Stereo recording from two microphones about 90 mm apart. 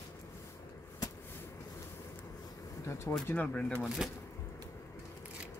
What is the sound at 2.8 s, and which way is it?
Speech, 40° left (ahead or behind).